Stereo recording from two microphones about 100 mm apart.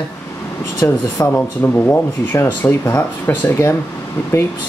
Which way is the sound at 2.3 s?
30° left (ahead or behind).